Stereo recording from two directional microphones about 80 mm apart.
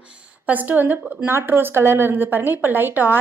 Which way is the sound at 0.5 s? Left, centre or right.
Right.